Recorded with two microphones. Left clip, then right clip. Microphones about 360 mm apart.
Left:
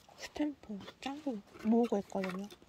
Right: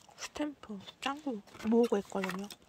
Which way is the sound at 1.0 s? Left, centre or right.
Centre.